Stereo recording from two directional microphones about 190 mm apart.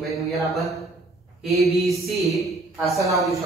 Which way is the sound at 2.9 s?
15° right (ahead or behind).